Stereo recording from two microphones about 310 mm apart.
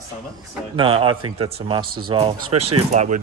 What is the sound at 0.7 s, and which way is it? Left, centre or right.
A man's voice, centre.